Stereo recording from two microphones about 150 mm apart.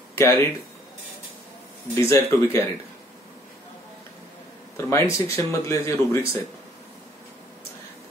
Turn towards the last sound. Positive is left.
turn(degrees=20)  # may be behind; listen again after turning